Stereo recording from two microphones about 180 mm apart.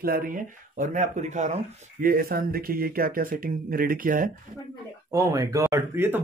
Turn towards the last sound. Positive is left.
turn(degrees=-15)  # may be behind; listen again after turning